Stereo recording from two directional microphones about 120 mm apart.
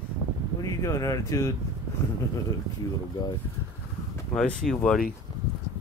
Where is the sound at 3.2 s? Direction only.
40° left (ahead or behind).